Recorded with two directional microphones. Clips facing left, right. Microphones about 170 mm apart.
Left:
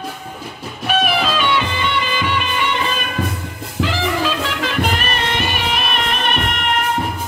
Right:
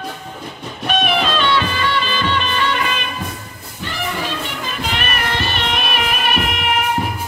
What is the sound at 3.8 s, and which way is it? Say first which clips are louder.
Music: left 6 dB; 90° left.